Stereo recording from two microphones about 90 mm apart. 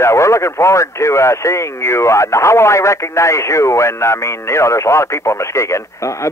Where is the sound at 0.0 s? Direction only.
35° left (ahead or behind).